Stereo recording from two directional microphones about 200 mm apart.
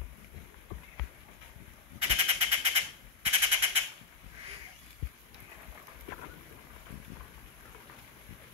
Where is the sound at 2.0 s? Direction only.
30° right (ahead or behind).